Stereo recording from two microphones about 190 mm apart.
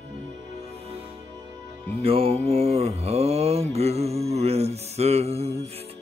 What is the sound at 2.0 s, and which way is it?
Mantra, 30° right (ahead or behind).